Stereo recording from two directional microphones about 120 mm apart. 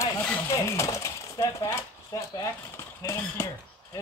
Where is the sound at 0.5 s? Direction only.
25° left (ahead or behind).